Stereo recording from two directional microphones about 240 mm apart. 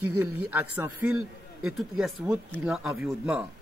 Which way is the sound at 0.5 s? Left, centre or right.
Centre.